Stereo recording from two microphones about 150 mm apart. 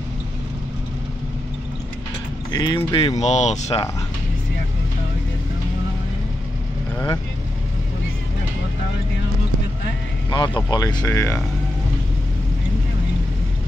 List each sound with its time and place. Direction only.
2.5 s speech: 30° left (ahead or behind)
3.2 s speech: 50° left (ahead or behind)
10.3 s speech: 30° left (ahead or behind)